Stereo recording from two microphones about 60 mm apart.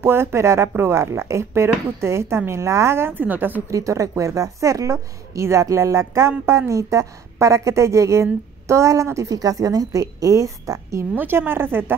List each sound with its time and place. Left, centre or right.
0.0 s speech: right
3.7 s a woman's voice: right
11.1 s a woman's voice: right